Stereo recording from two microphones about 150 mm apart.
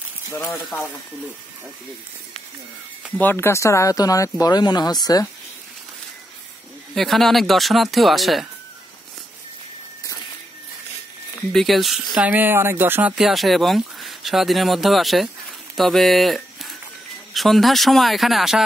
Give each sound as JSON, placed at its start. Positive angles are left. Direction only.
{"t": 0.4, "sound": "speech", "side_deg": 10}
{"t": 3.2, "sound": "speech", "side_deg": 15}
{"t": 7.0, "sound": "speech", "side_deg": 0}
{"t": 11.5, "sound": "speech", "side_deg": 0}
{"t": 13.1, "sound": "speech", "side_deg": 0}